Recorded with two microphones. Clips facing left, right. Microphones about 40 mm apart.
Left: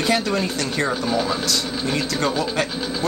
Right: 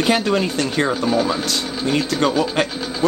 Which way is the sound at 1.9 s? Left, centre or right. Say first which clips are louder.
Right 5 dB; right.